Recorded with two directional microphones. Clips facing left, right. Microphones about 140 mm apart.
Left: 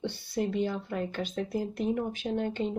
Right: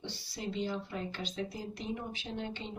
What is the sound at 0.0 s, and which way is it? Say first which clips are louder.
Speech: left 10 dB; 55° left (ahead or behind).